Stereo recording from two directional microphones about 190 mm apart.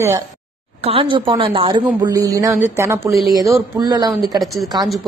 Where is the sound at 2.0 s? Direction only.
20° right (ahead or behind).